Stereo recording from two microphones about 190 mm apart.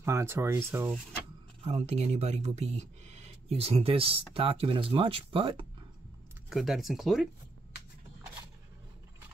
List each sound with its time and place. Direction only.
0.0 s speech: 15° right (ahead or behind)
1.6 s speech: 35° right (ahead or behind)
6.5 s speech: centre (ahead or behind)